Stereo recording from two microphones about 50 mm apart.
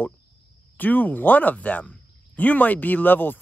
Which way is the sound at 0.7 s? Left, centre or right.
Left.